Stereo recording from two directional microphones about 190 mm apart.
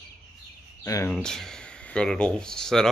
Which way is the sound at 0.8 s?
15° left (ahead or behind).